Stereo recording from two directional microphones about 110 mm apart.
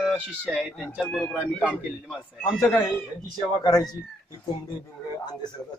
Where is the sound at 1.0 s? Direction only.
5° left (ahead or behind).